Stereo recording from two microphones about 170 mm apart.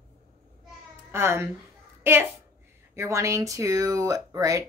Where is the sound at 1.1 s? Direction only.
15° right (ahead or behind).